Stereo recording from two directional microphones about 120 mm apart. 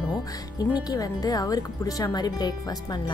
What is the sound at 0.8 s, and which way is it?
Speech, 30° left (ahead or behind).